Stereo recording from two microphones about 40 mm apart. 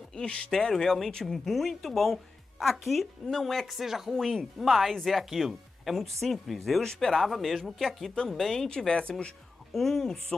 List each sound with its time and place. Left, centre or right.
0.1 s speech: left
1.5 s speech: centre
4.1 s speech: centre
6.8 s speech: centre
8.6 s speech: left
9.7 s speech: centre